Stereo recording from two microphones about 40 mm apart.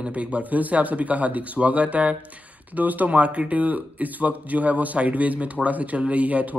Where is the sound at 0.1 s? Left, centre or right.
Right.